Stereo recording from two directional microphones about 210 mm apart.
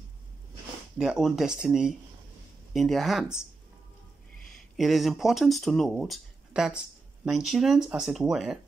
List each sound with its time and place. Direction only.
0.9 s speech: centre (ahead or behind)
4.7 s speech: centre (ahead or behind)